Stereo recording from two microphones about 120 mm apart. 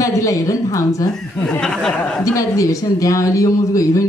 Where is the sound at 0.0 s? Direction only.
25° left (ahead or behind).